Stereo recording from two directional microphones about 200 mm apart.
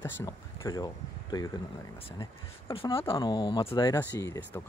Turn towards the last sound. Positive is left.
turn(degrees=15)  # may be behind; listen again after turning